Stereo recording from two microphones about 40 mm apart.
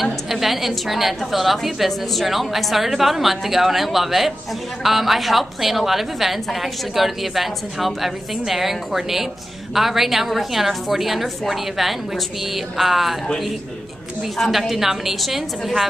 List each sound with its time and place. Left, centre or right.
0.0 s a woman's voice: centre
14.4 s a woman's voice: centre